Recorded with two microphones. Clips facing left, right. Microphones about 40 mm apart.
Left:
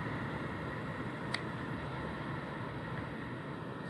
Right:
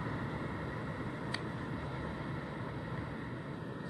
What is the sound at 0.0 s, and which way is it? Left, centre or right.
Vehicle, centre.